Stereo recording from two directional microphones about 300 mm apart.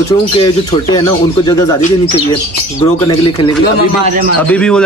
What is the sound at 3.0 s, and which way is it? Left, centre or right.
Speech, centre.